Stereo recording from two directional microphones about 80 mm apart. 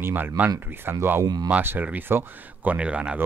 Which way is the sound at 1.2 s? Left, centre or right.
Right.